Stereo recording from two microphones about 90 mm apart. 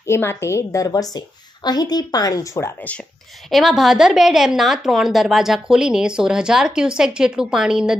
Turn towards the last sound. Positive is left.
turn(degrees=-10)  # may be behind; listen again after turning